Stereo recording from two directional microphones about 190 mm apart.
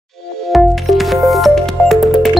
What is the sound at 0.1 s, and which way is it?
Music, centre (ahead or behind).